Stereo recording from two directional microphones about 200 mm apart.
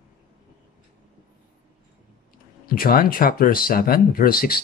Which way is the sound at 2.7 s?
45° left (ahead or behind).